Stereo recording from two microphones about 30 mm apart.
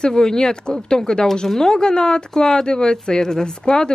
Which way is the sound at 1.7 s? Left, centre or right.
Left.